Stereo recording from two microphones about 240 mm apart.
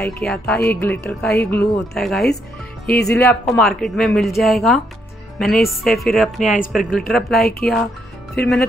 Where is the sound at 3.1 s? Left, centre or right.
Centre.